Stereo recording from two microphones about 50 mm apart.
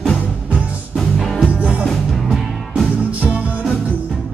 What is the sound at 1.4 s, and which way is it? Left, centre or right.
Music, right.